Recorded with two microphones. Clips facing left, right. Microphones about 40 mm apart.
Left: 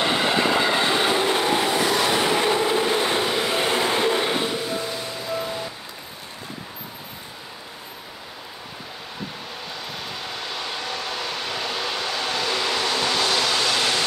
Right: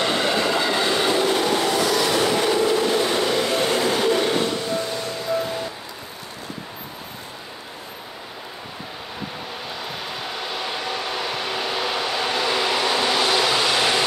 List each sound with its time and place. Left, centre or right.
0.0 s train: centre
9.9 s vehicle: centre